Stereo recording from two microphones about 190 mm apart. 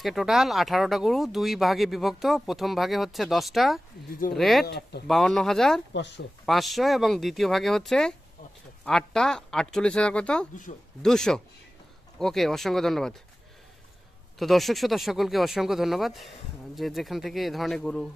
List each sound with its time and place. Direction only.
0.0 s speech: centre (ahead or behind)
4.6 s speech: 60° left (ahead or behind)
5.0 s speech: centre (ahead or behind)
14.4 s speech: centre (ahead or behind)